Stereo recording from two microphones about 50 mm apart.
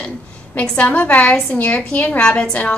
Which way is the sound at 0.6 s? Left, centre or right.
Left.